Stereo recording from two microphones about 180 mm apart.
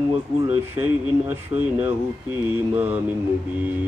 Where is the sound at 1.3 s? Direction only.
10° right (ahead or behind).